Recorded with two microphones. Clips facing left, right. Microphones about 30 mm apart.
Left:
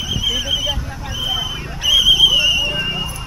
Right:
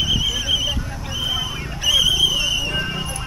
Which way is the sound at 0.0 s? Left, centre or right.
Centre.